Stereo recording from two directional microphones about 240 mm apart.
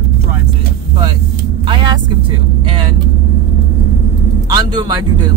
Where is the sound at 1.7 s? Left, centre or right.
Centre.